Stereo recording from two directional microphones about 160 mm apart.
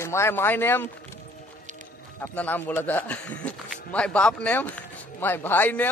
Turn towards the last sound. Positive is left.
turn(degrees=10)  # may be behind; listen again after turning